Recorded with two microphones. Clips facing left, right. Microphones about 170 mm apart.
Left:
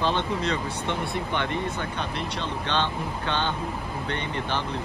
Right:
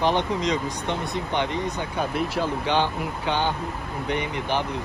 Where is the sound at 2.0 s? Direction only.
5° right (ahead or behind).